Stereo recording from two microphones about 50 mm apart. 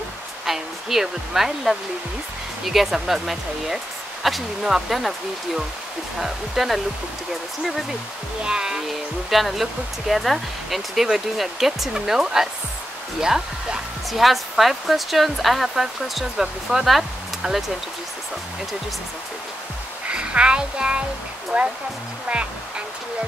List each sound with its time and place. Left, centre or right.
0.5 s speech: centre
6.1 s speech: centre
8.4 s speech: centre
9.3 s speech: centre
20.1 s speech: right
21.5 s music: right